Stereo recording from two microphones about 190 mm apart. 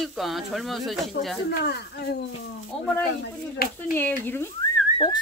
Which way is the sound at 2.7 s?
5° left (ahead or behind).